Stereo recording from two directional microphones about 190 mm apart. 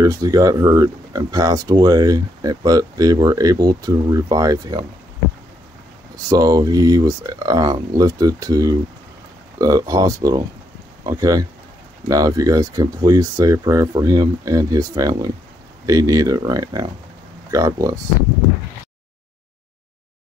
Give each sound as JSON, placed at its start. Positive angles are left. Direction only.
{"t": 0.0, "sound": "speech", "side_deg": -20}
{"t": 6.2, "sound": "speech", "side_deg": -20}